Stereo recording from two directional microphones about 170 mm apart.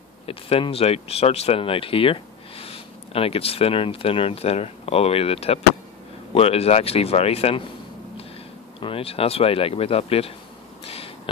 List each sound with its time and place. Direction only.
0.3 s speech: 35° left (ahead or behind)
8.7 s speech: 30° left (ahead or behind)